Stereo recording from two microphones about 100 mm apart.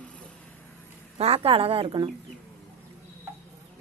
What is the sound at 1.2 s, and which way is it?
Speech, 75° right (ahead or behind).